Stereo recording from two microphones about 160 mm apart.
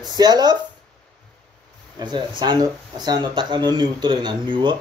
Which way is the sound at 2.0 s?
30° right (ahead or behind).